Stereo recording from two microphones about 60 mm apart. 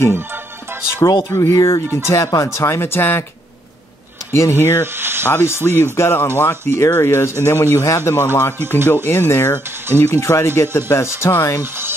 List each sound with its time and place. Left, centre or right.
1.0 s speech: left
4.3 s speech: left
4.9 s speech: right
5.3 s speech: left